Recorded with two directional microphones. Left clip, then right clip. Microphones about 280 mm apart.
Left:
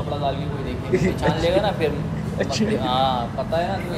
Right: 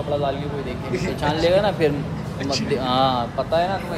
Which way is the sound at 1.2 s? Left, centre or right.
Right.